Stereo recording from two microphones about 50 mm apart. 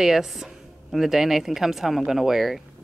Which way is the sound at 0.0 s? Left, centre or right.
Centre.